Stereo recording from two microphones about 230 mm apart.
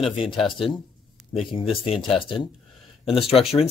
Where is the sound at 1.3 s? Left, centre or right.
Left.